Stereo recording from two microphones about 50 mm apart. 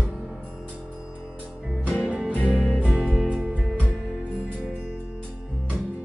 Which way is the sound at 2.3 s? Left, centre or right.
Left.